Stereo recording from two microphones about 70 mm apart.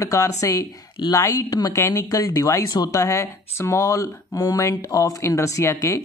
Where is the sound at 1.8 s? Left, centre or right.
Left.